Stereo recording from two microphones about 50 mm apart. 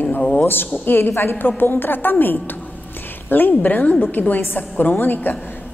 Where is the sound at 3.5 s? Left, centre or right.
Left.